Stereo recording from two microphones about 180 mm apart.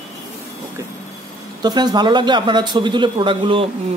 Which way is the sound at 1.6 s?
25° right (ahead or behind).